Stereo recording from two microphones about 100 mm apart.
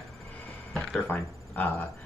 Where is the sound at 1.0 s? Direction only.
15° left (ahead or behind).